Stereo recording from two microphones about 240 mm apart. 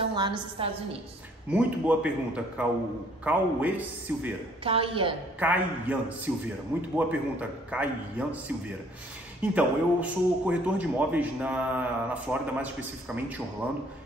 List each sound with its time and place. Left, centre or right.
0.1 s a woman's voice: centre
1.5 s a man's voice: centre
4.6 s a woman's voice: right
5.4 s a man's voice: centre